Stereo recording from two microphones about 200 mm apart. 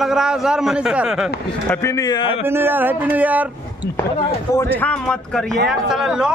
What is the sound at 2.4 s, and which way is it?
A man's voice, 10° right (ahead or behind).